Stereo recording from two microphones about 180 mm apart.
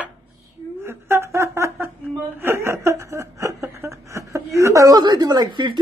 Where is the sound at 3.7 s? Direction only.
15° right (ahead or behind).